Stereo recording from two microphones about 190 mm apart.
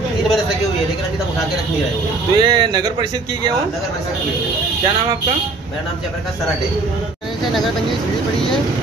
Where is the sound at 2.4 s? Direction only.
20° right (ahead or behind).